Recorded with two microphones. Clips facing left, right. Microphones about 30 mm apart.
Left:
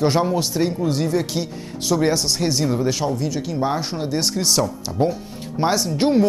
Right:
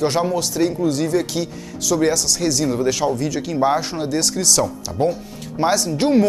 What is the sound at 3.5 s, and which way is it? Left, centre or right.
Speech, centre.